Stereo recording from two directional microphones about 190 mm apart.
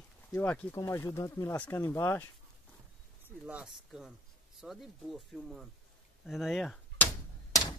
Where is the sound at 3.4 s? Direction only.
5° right (ahead or behind).